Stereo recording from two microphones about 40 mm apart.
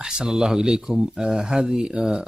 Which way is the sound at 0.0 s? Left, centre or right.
Centre.